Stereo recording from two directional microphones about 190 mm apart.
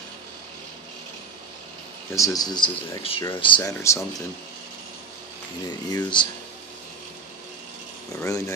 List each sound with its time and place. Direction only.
2.1 s speech: 20° left (ahead or behind)
5.7 s speech: 20° left (ahead or behind)
8.2 s speech: 15° left (ahead or behind)